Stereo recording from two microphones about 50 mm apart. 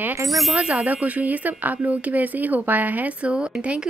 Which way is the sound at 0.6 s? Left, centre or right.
Right.